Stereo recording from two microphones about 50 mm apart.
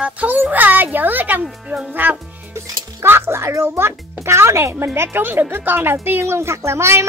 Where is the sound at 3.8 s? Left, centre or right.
Right.